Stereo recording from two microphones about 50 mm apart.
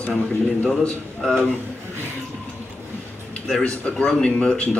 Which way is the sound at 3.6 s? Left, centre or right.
Centre.